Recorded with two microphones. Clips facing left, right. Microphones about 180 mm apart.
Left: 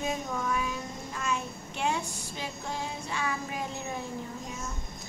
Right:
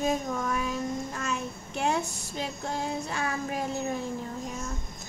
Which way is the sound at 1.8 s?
45° right (ahead or behind).